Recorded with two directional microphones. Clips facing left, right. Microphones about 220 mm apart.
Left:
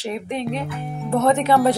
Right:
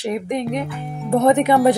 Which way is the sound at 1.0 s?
15° right (ahead or behind).